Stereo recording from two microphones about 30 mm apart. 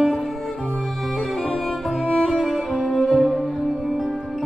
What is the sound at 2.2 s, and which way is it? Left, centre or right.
Music, centre.